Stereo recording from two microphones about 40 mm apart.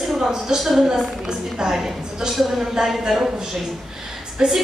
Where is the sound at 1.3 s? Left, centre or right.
Centre.